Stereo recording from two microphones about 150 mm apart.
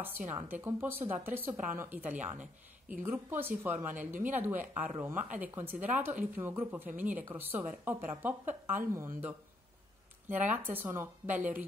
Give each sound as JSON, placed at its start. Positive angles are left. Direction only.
{"t": 0.3, "sound": "speech", "side_deg": -10}
{"t": 3.9, "sound": "a woman's voice", "side_deg": -55}
{"t": 4.2, "sound": "speech", "side_deg": -15}
{"t": 10.5, "sound": "speech", "side_deg": -15}